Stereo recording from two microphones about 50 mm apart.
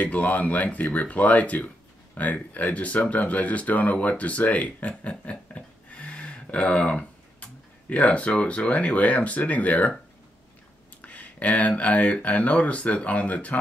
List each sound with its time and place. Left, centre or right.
0.0 s speech: left
11.0 s speech: left